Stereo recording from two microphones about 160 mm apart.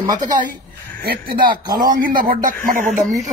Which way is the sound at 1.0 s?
75° right (ahead or behind).